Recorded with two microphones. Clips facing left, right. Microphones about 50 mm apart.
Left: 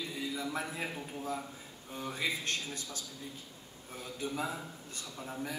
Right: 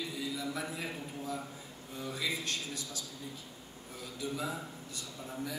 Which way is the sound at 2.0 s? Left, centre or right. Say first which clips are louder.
Left 1 dB; left.